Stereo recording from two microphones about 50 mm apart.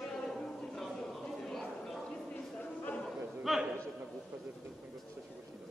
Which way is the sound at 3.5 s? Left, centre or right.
Centre.